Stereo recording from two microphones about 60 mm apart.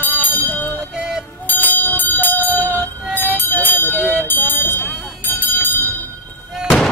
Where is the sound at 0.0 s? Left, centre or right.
Left.